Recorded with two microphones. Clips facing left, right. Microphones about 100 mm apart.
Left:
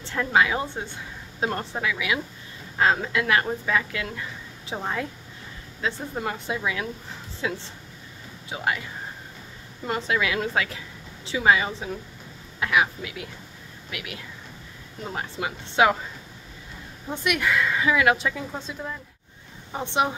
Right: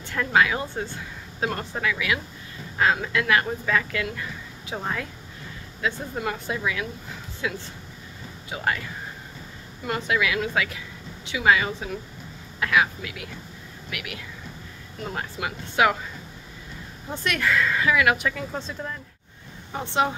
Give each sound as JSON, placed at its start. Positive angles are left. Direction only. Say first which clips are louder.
{"t": 0.0, "sound": "speech", "louder": "even", "side_deg": 25}
{"t": 2.8, "sound": "speech", "louder": "left 1 dB", "side_deg": 30}
{"t": 5.8, "sound": "speech", "louder": "right 1 dB", "side_deg": 30}
{"t": 9.8, "sound": "a woman's voice", "louder": "even", "side_deg": 25}
{"t": 17.1, "sound": "speech", "louder": "even", "side_deg": 15}
{"t": 19.7, "sound": "speech", "louder": "even", "side_deg": 20}